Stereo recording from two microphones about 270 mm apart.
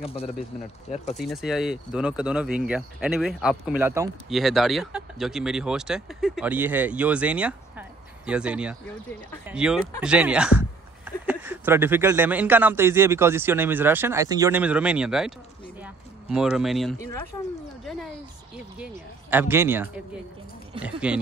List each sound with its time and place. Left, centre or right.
0.0 s speech: left
1.1 s a man's voice: centre
15.8 s a sound: centre
19.3 s a man's voice: centre